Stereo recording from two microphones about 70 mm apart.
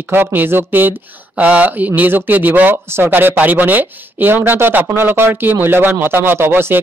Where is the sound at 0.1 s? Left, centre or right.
Right.